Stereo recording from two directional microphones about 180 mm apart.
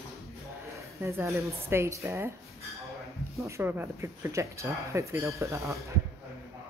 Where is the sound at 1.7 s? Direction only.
15° right (ahead or behind).